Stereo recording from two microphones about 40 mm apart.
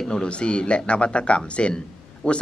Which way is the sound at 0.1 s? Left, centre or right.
Left.